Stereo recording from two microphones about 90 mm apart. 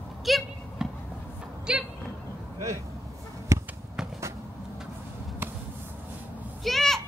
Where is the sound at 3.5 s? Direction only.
35° right (ahead or behind).